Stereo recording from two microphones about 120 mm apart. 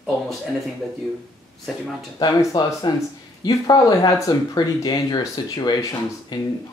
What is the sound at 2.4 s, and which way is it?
Speech, 25° left (ahead or behind).